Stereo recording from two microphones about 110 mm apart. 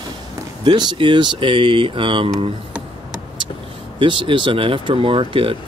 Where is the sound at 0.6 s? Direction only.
45° right (ahead or behind).